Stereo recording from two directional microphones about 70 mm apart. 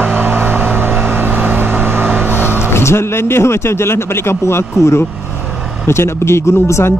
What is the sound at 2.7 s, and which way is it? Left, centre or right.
Speech, left.